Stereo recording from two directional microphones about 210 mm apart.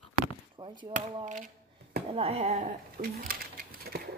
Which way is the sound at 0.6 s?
25° right (ahead or behind).